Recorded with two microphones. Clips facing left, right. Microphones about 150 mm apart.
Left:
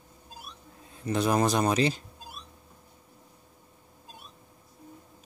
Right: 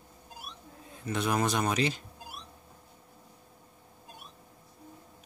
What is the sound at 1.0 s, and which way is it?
A man's voice, 35° left (ahead or behind).